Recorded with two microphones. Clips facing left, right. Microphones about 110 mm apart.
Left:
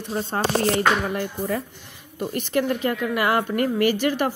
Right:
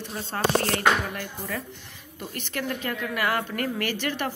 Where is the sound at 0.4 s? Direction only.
20° left (ahead or behind).